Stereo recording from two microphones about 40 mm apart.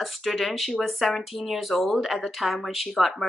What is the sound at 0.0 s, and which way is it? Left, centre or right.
Speech, centre.